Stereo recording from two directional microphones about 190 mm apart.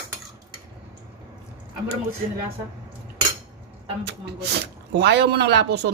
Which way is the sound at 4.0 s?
60° right (ahead or behind).